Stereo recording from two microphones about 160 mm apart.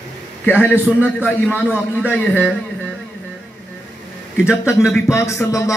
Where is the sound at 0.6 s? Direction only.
10° left (ahead or behind).